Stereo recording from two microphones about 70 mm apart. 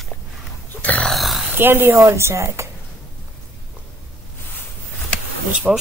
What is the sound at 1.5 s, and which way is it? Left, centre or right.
A woman's voice, right.